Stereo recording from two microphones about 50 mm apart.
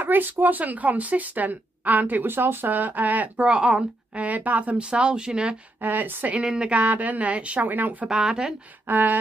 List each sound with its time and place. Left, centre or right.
0.0 s speech: right
3.4 s a woman's voice: centre
5.8 s speech: right
6.4 s speech: centre
6.7 s a woman's voice: right
8.1 s speech: centre
8.8 s speech: right